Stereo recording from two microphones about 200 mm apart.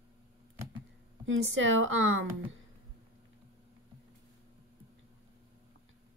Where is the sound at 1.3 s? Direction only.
75° right (ahead or behind).